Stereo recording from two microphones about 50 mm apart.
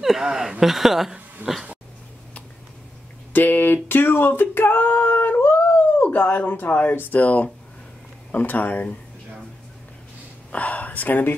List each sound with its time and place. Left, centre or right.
0.0 s speech: centre
1.4 s a sound: right
3.3 s singing: left
10.5 s singing: left